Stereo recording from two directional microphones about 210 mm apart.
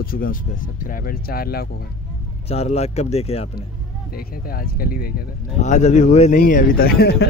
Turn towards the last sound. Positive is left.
turn(degrees=50)  # may be behind; listen again after turning